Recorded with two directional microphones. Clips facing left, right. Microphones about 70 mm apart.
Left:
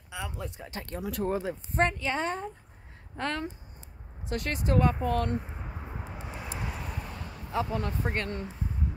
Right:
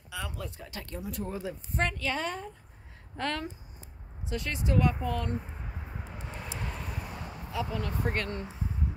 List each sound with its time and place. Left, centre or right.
0.1 s speech: left
1.0 s speech: left
1.3 s speech: left
4.3 s speech: left
6.0 s vehicle: centre
7.5 s speech: left